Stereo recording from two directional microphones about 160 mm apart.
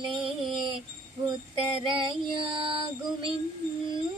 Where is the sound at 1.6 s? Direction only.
35° right (ahead or behind).